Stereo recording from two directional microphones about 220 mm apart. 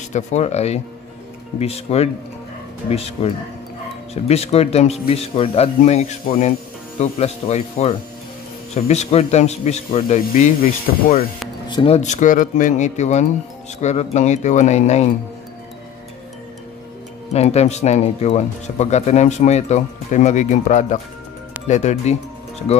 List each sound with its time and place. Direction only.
0.1 s speech: 30° left (ahead or behind)
11.7 s speech: 25° left (ahead or behind)
17.3 s speech: 30° left (ahead or behind)